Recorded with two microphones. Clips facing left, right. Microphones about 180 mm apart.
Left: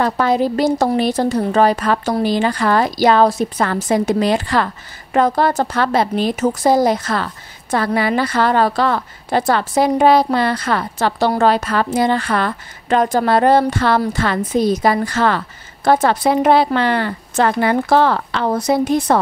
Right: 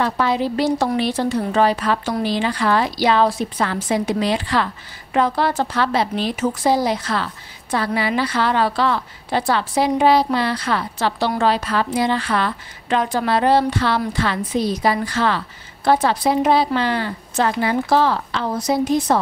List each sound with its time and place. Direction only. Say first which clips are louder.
0.0 s a woman's voice: left 4 dB; 45° left (ahead or behind)